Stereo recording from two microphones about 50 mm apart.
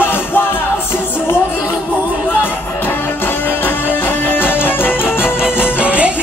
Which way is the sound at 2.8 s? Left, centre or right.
Left.